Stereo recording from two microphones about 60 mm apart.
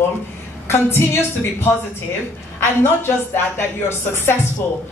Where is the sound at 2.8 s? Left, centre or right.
Left.